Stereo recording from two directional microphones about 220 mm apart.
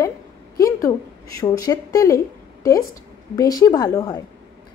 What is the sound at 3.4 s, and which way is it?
Speech, 15° left (ahead or behind).